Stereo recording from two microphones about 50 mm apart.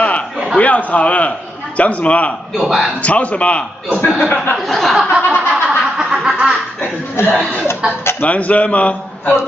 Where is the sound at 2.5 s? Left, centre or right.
Centre.